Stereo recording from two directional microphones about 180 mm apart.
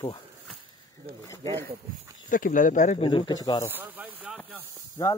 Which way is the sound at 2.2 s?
50° left (ahead or behind).